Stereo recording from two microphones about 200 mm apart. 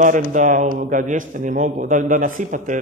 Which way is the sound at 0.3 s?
40° right (ahead or behind).